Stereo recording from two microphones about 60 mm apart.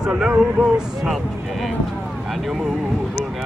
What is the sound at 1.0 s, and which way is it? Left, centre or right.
Speech, centre.